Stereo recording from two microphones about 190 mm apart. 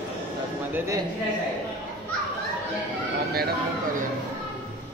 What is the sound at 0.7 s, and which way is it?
Speech, 15° right (ahead or behind).